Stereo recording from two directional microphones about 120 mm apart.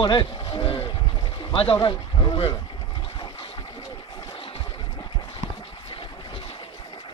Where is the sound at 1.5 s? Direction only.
50° left (ahead or behind).